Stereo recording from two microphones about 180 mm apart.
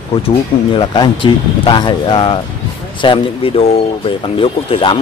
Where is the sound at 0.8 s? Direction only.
25° left (ahead or behind).